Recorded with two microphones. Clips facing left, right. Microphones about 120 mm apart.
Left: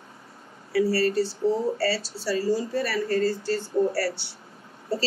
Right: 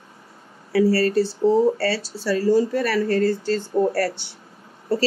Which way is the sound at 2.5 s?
60° right (ahead or behind).